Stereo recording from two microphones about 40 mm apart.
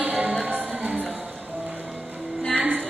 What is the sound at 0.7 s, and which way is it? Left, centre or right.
Music, right.